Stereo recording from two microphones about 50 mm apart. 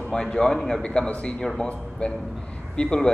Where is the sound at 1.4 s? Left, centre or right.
Centre.